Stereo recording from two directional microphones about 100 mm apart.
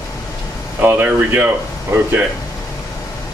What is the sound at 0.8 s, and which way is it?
Speech, 20° right (ahead or behind).